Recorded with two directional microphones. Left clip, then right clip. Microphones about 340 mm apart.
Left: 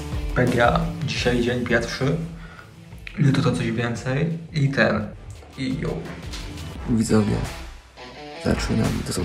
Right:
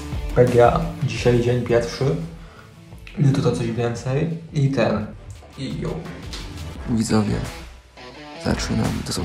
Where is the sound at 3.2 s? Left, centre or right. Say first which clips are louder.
Right 1 dB; centre.